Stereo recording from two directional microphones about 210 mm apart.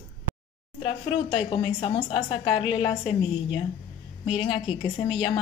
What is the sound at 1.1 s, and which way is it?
A woman's voice, 25° left (ahead or behind).